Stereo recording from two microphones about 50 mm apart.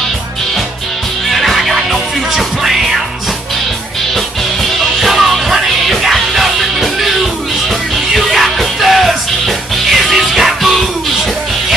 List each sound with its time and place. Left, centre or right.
1.3 s music: centre
5.0 s music: centre